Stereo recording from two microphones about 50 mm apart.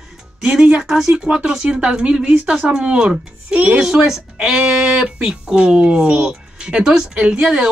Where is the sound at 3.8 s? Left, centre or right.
Centre.